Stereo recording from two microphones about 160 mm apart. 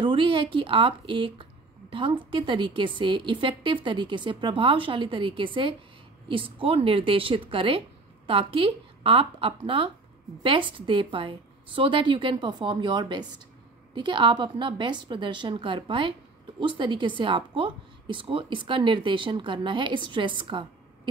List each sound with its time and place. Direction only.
0.0 s speech: 30° right (ahead or behind)